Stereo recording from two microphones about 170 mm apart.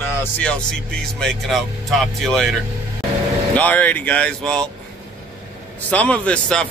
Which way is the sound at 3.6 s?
10° left (ahead or behind).